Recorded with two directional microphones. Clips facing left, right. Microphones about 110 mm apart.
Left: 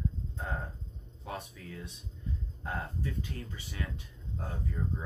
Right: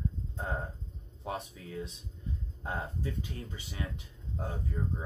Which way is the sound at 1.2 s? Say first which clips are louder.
Right 3 dB; 25° right (ahead or behind).